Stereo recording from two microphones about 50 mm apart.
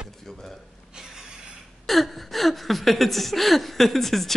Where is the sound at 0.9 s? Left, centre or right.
Centre.